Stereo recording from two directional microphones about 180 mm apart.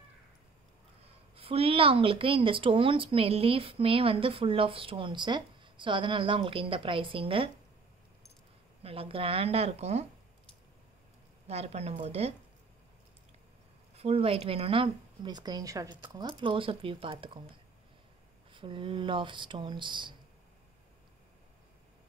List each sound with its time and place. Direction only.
1.0 s a woman's voice: 35° right (ahead or behind)
8.8 s a woman's voice: 30° right (ahead or behind)
11.4 s a woman's voice: 35° right (ahead or behind)
13.9 s a woman's voice: 35° right (ahead or behind)
18.5 s a woman's voice: 25° right (ahead or behind)